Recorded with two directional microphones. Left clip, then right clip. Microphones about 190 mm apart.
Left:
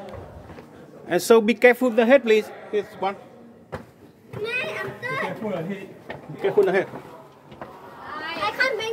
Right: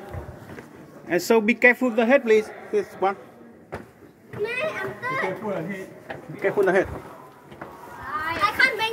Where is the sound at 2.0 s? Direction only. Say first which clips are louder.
Left 1 dB; 30° left (ahead or behind).